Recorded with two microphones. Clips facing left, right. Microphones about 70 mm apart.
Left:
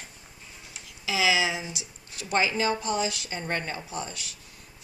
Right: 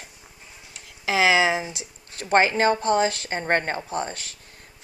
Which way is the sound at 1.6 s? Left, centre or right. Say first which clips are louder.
Right 2 dB; right.